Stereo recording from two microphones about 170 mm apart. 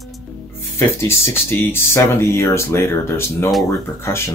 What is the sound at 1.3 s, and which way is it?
Speech, 15° left (ahead or behind).